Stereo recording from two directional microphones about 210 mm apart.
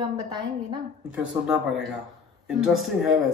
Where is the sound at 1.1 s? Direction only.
5° right (ahead or behind).